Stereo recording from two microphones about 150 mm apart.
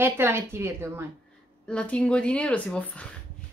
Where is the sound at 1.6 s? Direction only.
5° left (ahead or behind).